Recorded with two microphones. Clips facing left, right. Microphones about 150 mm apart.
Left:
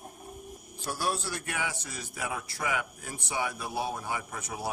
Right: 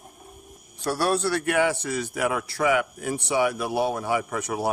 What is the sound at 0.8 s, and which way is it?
A man's voice, 70° right (ahead or behind).